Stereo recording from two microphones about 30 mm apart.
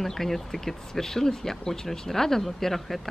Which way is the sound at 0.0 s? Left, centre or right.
Centre.